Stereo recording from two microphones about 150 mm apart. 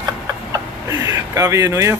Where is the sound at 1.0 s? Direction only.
20° right (ahead or behind).